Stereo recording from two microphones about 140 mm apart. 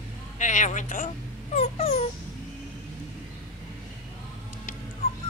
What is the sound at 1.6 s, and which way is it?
Dog, 50° left (ahead or behind).